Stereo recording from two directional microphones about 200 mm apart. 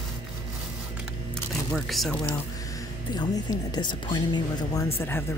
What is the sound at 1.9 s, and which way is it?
Speech, centre (ahead or behind).